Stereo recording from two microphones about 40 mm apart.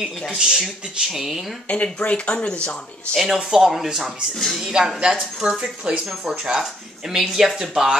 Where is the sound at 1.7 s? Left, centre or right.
Left.